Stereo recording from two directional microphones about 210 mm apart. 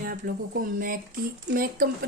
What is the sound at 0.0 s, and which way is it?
A woman's voice, 40° right (ahead or behind).